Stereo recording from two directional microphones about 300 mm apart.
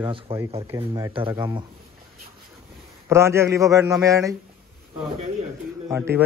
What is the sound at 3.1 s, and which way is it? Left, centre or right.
A man's voice, centre.